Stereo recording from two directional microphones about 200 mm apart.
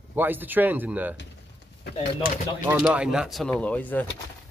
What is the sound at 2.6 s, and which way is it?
Speech, 5° right (ahead or behind).